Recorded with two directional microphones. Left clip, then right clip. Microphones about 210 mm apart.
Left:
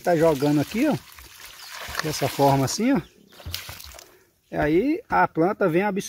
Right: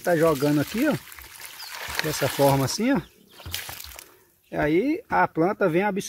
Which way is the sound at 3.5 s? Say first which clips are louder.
Right 1 dB; 15° right (ahead or behind).